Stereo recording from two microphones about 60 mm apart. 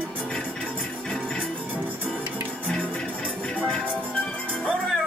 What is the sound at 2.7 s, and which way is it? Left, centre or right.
Music, centre.